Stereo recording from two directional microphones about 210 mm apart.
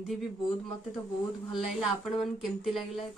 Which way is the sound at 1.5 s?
Centre (ahead or behind).